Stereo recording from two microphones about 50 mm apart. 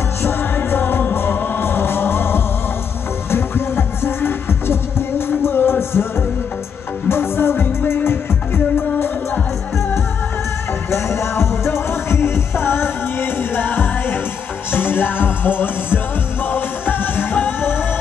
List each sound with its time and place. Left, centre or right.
0.2 s music: left
10.9 s music: left